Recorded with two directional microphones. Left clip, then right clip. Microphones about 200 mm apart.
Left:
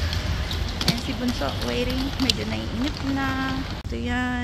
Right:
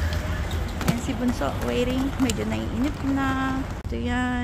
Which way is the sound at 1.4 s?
10° right (ahead or behind).